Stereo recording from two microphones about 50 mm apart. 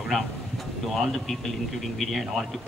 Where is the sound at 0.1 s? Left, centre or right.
Centre.